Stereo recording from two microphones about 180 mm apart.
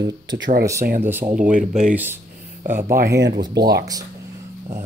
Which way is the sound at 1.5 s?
45° right (ahead or behind).